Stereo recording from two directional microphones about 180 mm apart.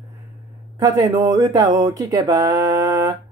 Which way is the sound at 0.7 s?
15° right (ahead or behind).